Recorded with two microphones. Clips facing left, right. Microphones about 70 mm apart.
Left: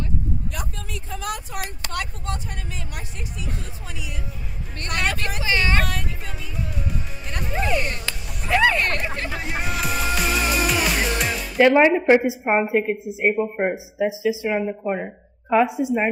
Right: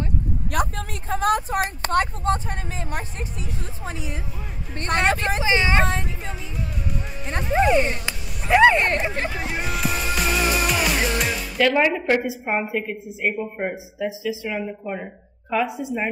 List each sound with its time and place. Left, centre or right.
0.5 s a woman's voice: right
7.5 s speech: right
9.4 s music: centre
11.5 s a woman's voice: left